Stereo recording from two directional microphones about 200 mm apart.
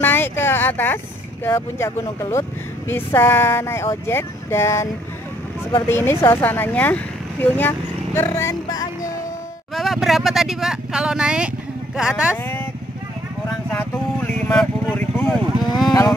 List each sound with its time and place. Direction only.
0.0 s a sound: 10° left (ahead or behind)
1.4 s a woman's voice: 10° left (ahead or behind)
5.9 s a woman's voice: 10° left (ahead or behind)
9.8 s speech: centre (ahead or behind)
13.5 s speech: 5° left (ahead or behind)
15.8 s speech: 20° left (ahead or behind)